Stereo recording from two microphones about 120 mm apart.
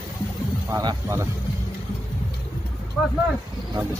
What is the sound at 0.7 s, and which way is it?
Speech, 35° right (ahead or behind).